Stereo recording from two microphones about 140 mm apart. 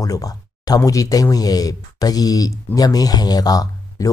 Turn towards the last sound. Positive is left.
turn(degrees=25)  # may be behind; listen again after turning